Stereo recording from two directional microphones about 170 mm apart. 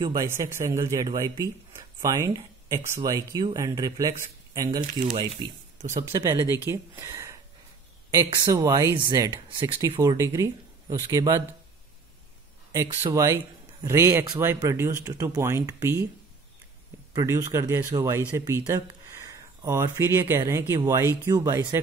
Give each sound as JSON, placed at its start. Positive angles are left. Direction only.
{"t": 0.0, "sound": "speech", "side_deg": -20}
{"t": 8.5, "sound": "speech", "side_deg": -20}
{"t": 13.0, "sound": "speech", "side_deg": -15}
{"t": 17.1, "sound": "speech", "side_deg": -20}